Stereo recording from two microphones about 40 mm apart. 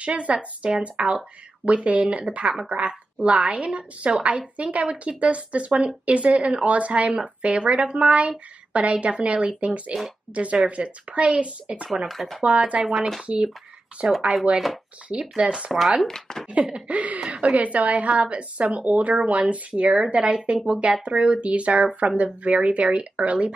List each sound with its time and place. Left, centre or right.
0.0 s a woman's voice: right
12.1 s speech: centre
12.4 s a woman's voice: right
15.7 s speech: centre
16.1 s speech: centre
16.5 s a woman's voice: right
19.7 s a woman's voice: right